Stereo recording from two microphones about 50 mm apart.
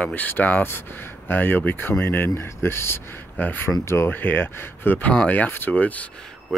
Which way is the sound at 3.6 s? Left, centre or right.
Left.